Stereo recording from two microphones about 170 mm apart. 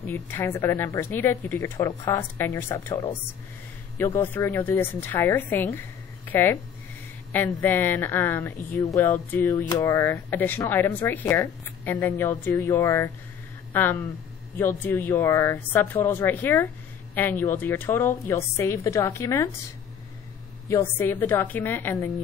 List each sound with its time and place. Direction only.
0.0 s speech: 15° left (ahead or behind)
4.0 s speech: 15° left (ahead or behind)
20.6 s speech: 15° left (ahead or behind)